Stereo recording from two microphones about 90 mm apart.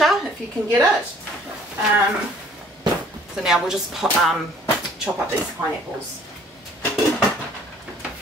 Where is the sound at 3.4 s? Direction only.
5° right (ahead or behind).